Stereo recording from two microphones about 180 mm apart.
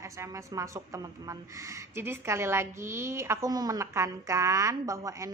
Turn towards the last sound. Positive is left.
turn(degrees=-15)  # may be behind; listen again after turning